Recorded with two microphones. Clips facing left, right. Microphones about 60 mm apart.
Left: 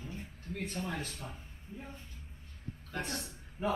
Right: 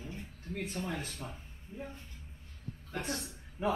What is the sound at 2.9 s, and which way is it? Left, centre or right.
Speech, centre.